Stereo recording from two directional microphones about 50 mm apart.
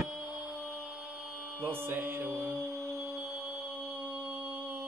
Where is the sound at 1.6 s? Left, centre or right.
Right.